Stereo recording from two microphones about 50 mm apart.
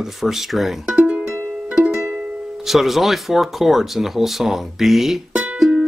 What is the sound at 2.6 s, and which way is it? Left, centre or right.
Speech, centre.